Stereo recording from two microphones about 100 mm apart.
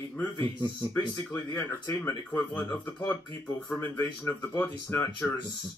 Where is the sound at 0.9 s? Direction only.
20° left (ahead or behind).